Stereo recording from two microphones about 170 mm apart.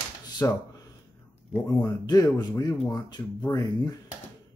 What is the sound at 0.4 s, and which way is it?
Speech, 20° left (ahead or behind).